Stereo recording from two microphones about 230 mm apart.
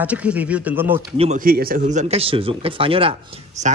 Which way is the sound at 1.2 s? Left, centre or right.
Right.